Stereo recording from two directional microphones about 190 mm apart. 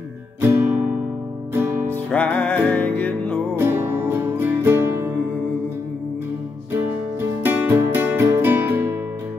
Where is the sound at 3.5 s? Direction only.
10° right (ahead or behind).